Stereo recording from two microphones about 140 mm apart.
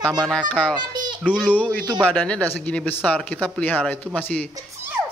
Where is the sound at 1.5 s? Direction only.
10° left (ahead or behind).